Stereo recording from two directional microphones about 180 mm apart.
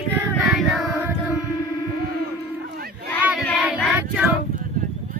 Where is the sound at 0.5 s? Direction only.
Centre (ahead or behind).